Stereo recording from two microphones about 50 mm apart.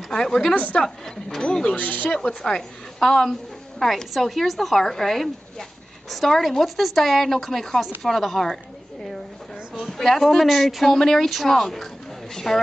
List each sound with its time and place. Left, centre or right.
0.1 s speech: centre
1.8 s speech: left
2.0 s a woman's voice: centre
9.8 s a woman's voice: centre